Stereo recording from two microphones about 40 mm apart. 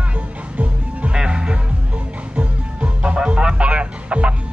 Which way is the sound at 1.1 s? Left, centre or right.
Right.